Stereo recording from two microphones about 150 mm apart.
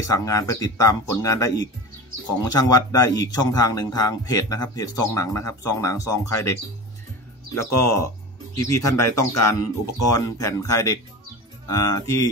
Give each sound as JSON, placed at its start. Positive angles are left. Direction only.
{"t": 0.0, "sound": "speech", "side_deg": 20}
{"t": 7.6, "sound": "speech", "side_deg": 20}